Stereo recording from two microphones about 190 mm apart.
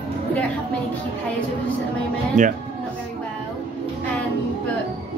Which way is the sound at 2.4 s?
40° right (ahead or behind).